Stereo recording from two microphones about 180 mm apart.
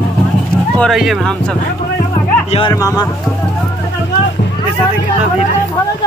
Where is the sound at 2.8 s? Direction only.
15° left (ahead or behind).